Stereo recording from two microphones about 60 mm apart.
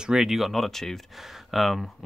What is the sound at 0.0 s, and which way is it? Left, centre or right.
Speech, centre.